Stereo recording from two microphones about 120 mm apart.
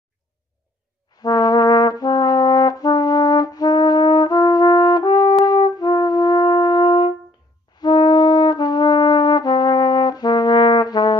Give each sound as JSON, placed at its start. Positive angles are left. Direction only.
{"t": 1.1, "sound": "brass instrument", "side_deg": 35}
{"t": 5.4, "sound": "wind instrument", "side_deg": 35}
{"t": 7.7, "sound": "brass instrument", "side_deg": 35}